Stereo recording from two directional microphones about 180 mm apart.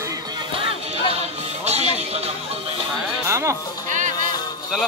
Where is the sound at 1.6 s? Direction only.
35° right (ahead or behind).